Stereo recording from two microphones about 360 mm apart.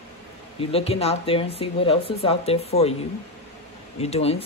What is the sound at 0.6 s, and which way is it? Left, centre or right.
Speech, centre.